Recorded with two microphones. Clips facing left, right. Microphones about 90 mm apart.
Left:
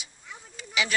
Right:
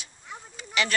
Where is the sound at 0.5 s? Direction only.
5° left (ahead or behind).